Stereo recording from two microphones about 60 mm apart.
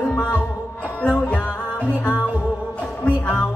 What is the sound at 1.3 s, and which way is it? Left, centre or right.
Music, left.